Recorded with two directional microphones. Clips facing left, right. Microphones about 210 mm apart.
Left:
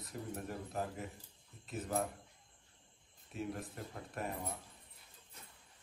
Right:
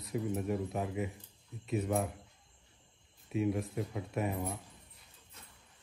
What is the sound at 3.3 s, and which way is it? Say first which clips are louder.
Speech: right 10 dB; centre (ahead or behind).